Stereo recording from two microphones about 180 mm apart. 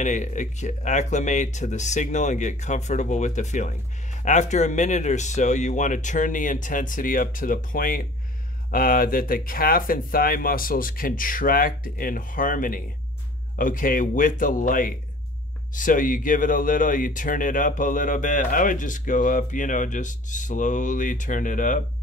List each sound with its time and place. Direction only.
0.0 s speech: 45° left (ahead or behind)